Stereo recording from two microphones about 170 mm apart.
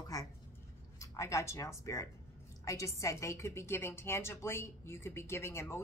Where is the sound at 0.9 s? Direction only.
15° left (ahead or behind).